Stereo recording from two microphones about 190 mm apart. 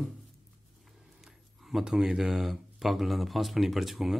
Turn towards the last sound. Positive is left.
turn(degrees=0)  # may be behind; listen again after turning